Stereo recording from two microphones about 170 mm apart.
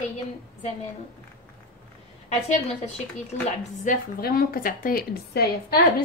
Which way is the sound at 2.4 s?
40° left (ahead or behind).